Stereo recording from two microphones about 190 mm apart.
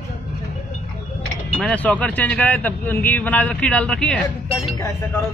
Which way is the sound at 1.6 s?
5° left (ahead or behind).